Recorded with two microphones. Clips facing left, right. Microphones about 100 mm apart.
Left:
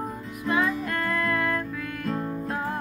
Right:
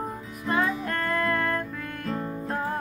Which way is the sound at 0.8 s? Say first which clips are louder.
Even; 40° right (ahead or behind).